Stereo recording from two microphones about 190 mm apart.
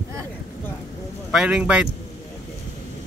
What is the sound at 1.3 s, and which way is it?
Speech, 5° right (ahead or behind).